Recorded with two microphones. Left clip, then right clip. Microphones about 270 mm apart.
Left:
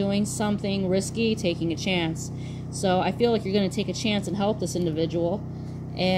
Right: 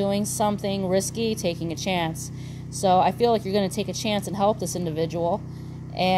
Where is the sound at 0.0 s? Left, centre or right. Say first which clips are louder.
Right 4 dB; right.